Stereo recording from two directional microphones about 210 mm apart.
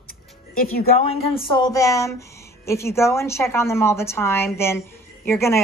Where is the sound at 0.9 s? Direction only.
30° left (ahead or behind).